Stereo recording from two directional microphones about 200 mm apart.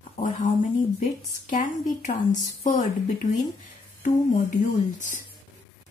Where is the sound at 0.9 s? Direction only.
40° left (ahead or behind).